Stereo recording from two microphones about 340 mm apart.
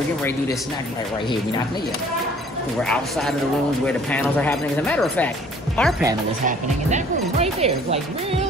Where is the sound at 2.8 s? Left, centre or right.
Centre.